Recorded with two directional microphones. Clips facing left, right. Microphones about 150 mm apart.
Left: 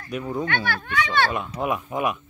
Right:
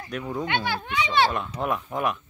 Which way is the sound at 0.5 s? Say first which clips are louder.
Even; 15° right (ahead or behind).